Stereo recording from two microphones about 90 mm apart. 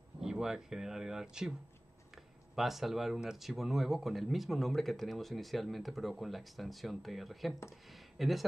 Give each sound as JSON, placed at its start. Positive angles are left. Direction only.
{"t": 0.2, "sound": "speech", "side_deg": -5}
{"t": 2.5, "sound": "speech", "side_deg": 0}